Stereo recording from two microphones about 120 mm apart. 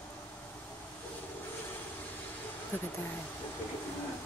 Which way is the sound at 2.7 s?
15° left (ahead or behind).